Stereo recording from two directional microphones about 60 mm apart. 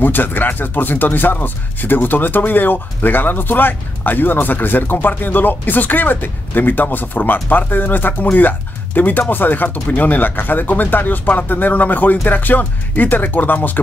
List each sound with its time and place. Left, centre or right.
0.0 s speech: left